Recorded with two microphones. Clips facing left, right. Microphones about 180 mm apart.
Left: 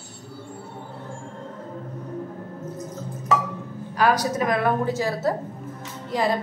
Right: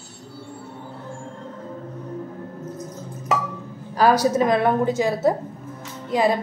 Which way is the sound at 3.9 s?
30° right (ahead or behind).